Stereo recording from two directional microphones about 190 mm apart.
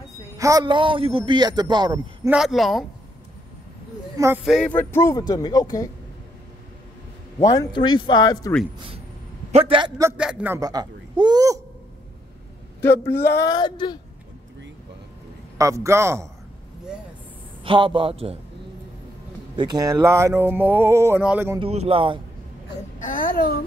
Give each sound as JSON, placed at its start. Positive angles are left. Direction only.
{"t": 0.4, "sound": "a man's voice", "side_deg": -20}
{"t": 2.2, "sound": "speech", "side_deg": -5}
{"t": 4.4, "sound": "speech", "side_deg": 0}
{"t": 7.3, "sound": "speech", "side_deg": 20}
{"t": 8.7, "sound": "a man's voice", "side_deg": -30}
{"t": 10.1, "sound": "a man's voice", "side_deg": -5}
{"t": 12.8, "sound": "speech", "side_deg": 10}
{"t": 15.5, "sound": "speech", "side_deg": -15}
{"t": 17.6, "sound": "a man's voice", "side_deg": -25}
{"t": 19.5, "sound": "speech", "side_deg": -20}
{"t": 21.5, "sound": "a man's voice", "side_deg": -30}
{"t": 22.9, "sound": "speech", "side_deg": 45}